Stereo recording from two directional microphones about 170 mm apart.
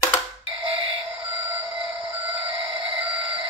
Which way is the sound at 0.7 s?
30° right (ahead or behind).